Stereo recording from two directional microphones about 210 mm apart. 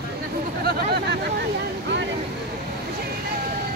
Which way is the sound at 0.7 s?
50° right (ahead or behind).